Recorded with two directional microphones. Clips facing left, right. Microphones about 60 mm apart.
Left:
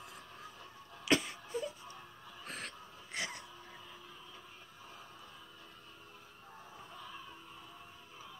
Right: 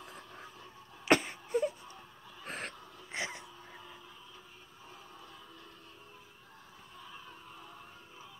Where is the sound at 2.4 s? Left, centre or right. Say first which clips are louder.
Right 4 dB; right.